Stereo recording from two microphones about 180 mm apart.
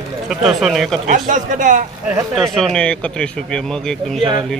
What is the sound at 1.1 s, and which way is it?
Speech, 45° right (ahead or behind).